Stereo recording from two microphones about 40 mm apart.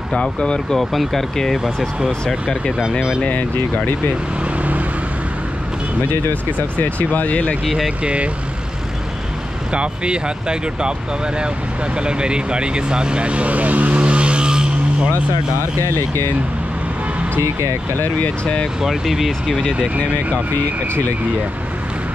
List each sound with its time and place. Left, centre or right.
0.1 s speech: left
0.7 s speech: centre
3.3 s speech: left
6.8 s speech: left
7.6 s speech: centre
8.0 s speech: right
9.7 s speech: right
18.4 s speech: left
18.9 s speech: centre